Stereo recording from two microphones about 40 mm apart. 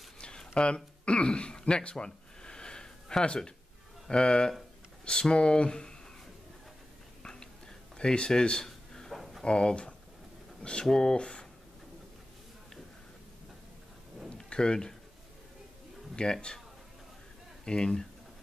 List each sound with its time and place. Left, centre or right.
0.2 s a sound: left
4.1 s speech: left
8.0 s speech: left
8.6 s a sound: centre
9.1 s a sound: centre
9.4 s speech: left
14.5 s speech: centre
16.2 s speech: left
17.6 s speech: centre